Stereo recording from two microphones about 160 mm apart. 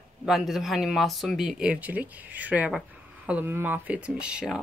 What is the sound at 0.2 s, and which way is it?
Speech, centre (ahead or behind).